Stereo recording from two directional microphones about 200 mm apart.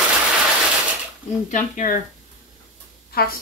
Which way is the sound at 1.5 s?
40° left (ahead or behind).